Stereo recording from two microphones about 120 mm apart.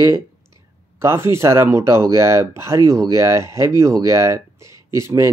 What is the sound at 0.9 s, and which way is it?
Speech, 20° right (ahead or behind).